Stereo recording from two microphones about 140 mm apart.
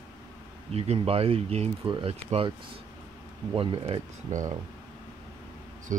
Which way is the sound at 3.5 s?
40° right (ahead or behind).